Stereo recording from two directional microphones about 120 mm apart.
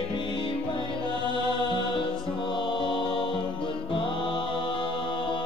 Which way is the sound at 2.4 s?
40° left (ahead or behind).